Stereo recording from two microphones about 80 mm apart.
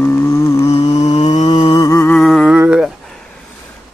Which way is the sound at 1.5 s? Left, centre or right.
Left.